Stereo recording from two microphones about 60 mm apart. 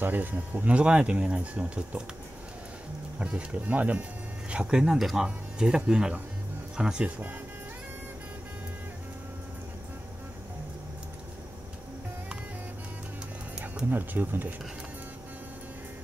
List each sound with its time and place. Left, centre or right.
0.0 s speech: right
3.2 s speech: right
7.1 s speech: right
13.8 s speech: right